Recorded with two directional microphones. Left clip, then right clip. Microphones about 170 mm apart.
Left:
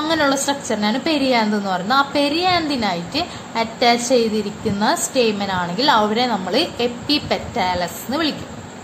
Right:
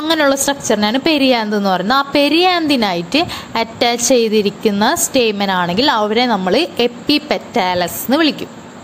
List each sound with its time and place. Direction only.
0.0 s a woman's voice: 50° right (ahead or behind)